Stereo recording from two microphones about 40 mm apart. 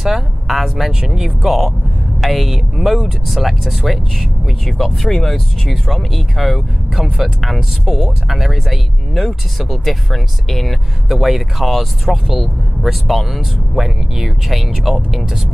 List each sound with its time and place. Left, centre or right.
0.0 s speech: centre
1.0 s speech: right
1.4 s speech: centre
7.0 s speech: centre